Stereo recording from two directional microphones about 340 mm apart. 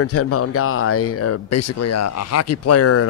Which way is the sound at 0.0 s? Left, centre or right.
Left.